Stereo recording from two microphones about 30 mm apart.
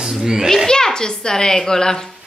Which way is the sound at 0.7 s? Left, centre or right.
Left.